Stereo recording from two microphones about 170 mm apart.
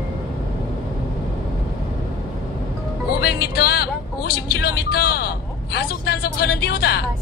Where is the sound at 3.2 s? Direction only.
65° left (ahead or behind).